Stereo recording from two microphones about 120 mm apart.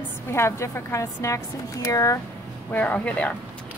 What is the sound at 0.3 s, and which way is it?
Speech, 20° left (ahead or behind).